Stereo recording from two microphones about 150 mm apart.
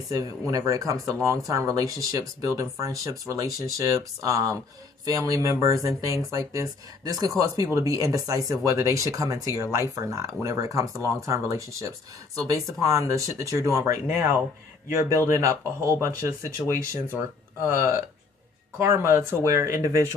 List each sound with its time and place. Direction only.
0.1 s speech: 25° right (ahead or behind)